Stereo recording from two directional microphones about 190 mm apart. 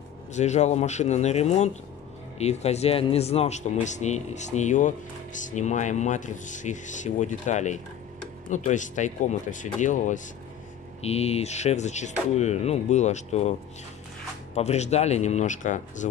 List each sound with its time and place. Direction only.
0.3 s speech: 35° left (ahead or behind)